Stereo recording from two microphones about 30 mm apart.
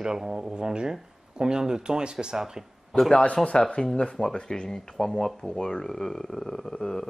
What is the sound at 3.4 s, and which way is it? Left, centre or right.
Speech, centre.